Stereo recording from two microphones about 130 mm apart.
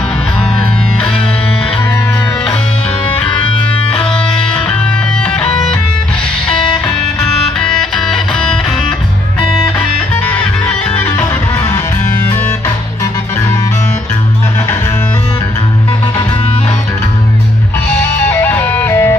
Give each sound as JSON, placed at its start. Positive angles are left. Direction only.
{"t": 3.9, "sound": "music", "side_deg": 10}
{"t": 7.2, "sound": "music", "side_deg": 5}
{"t": 9.8, "sound": "music", "side_deg": 10}
{"t": 18.3, "sound": "music", "side_deg": 15}